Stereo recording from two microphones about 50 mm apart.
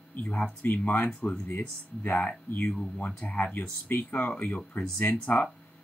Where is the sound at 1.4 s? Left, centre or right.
Left.